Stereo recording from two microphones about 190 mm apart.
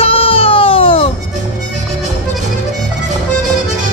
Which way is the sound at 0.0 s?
30° left (ahead or behind).